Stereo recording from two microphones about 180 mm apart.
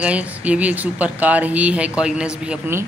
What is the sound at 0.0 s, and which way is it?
Speech, 5° right (ahead or behind).